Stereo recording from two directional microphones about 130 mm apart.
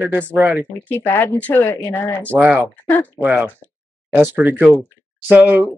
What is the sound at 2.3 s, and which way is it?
Speech, 10° right (ahead or behind).